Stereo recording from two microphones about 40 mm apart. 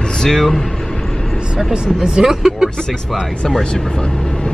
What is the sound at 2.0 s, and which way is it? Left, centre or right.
Speech, centre.